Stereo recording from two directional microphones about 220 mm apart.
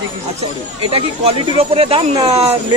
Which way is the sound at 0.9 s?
25° right (ahead or behind).